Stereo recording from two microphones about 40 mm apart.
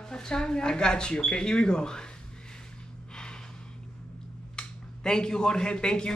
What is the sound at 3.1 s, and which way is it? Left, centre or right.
Gasp, left.